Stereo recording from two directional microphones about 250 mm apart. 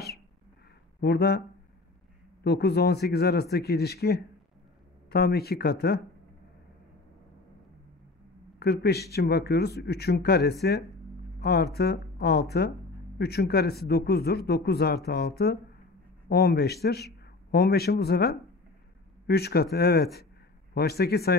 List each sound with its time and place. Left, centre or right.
1.0 s speech: left
2.4 s speech: left
8.5 s a man's voice: left